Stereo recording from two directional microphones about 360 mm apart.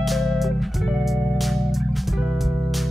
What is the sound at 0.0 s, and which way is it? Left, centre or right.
Music, centre.